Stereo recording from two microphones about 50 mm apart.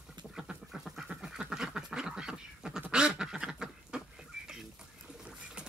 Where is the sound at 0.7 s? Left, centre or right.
Centre.